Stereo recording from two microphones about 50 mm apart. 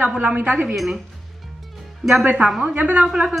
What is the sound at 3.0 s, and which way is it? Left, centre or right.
Speech, centre.